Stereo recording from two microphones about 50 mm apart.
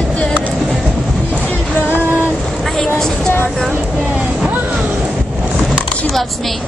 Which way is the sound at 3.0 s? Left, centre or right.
Centre.